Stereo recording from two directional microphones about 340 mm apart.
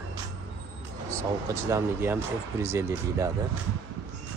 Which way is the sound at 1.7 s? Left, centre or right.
Centre.